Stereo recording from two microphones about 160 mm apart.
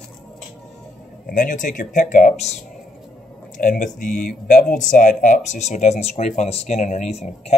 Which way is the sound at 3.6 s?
55° left (ahead or behind).